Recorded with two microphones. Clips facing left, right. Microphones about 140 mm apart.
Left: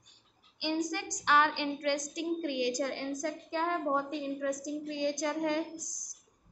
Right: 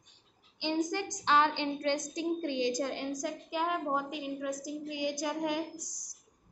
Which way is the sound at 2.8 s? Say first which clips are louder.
Even; 15° right (ahead or behind).